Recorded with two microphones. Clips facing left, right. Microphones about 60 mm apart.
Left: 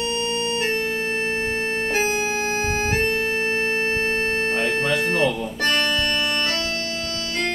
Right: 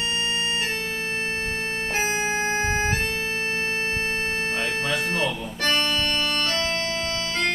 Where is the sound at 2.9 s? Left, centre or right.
Left.